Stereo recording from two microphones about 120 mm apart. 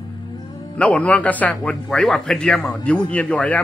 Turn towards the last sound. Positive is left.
turn(degrees=10)  # may be behind; listen again after turning